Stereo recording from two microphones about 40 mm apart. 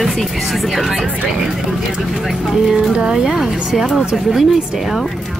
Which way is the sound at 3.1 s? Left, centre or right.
Centre.